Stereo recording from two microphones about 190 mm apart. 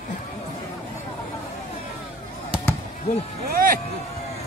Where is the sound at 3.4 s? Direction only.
50° right (ahead or behind).